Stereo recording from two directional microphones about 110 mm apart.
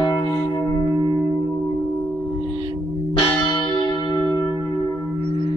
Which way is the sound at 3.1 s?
45° left (ahead or behind).